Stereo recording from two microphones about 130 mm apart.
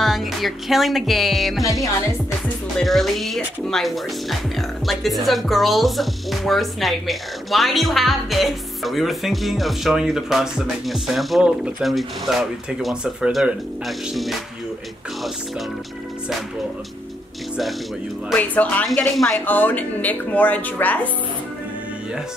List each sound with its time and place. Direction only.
0.0 s speech: centre (ahead or behind)
1.6 s speech: 25° left (ahead or behind)
2.8 s speech: centre (ahead or behind)
18.3 s speech: 10° left (ahead or behind)